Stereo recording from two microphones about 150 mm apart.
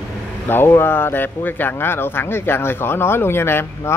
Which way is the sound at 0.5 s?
15° left (ahead or behind).